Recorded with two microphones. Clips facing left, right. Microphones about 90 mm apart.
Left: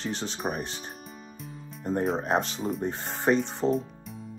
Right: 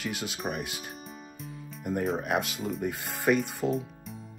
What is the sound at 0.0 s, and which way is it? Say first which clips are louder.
Speech: left 2 dB; 30° left (ahead or behind).